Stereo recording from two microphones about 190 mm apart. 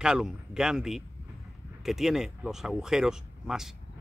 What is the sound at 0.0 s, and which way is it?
Speech, centre (ahead or behind).